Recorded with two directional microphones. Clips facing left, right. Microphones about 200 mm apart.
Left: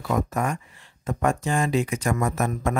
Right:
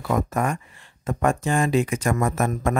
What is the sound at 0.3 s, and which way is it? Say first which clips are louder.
Speech: right 2 dB; 55° right (ahead or behind).